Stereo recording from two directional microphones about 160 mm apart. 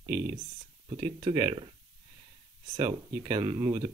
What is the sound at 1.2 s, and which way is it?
Speech, 20° right (ahead or behind).